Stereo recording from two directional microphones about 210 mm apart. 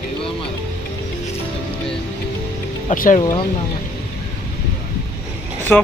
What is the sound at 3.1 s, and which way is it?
Speech, 25° left (ahead or behind).